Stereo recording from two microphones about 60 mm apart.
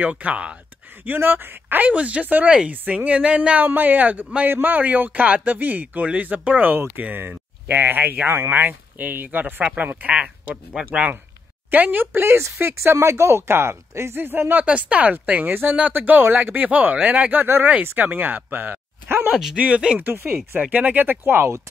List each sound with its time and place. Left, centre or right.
0.0 s speech: right
1.0 s speech: right
14.2 s speech: right
19.5 s speech: centre
20.0 s speech: right